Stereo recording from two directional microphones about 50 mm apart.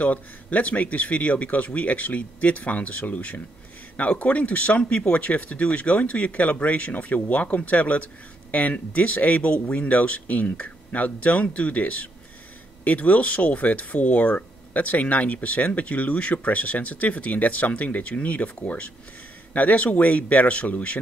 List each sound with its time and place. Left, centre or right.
0.0 s speech: left